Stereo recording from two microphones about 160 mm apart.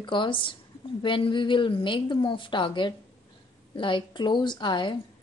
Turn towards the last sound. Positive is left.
turn(degrees=30)  # may be behind; listen again after turning